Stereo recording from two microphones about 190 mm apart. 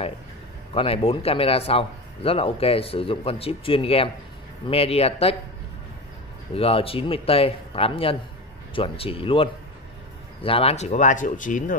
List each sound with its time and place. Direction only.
0.7 s a man's voice: 30° left (ahead or behind)
6.5 s a man's voice: 30° left (ahead or behind)